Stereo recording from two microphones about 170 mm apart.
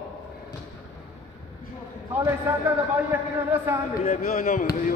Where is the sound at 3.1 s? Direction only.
10° right (ahead or behind).